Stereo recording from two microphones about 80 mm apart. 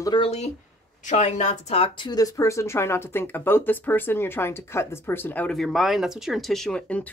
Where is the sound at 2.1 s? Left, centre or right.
Left.